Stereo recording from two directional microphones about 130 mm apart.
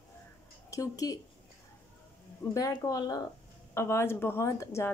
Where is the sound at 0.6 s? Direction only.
25° left (ahead or behind).